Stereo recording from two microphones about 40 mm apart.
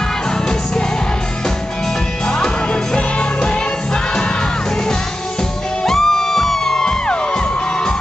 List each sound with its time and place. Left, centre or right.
2.2 s music: centre
5.9 s music: centre